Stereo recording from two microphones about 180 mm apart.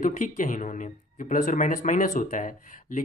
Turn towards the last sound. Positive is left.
turn(degrees=45)  # may be behind; listen again after turning